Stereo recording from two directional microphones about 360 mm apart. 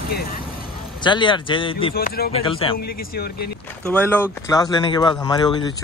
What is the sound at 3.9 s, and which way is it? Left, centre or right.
Speech, centre.